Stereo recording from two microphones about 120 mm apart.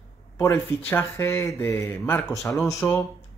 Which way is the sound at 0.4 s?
20° left (ahead or behind).